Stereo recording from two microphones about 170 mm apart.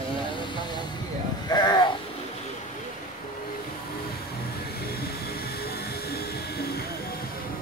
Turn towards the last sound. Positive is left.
turn(degrees=70)  # may be behind; listen again after turning